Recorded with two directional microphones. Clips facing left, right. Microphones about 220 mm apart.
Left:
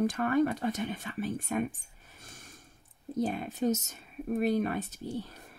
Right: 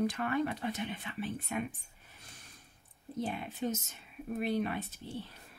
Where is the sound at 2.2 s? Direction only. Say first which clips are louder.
Left 6 dB; 45° left (ahead or behind).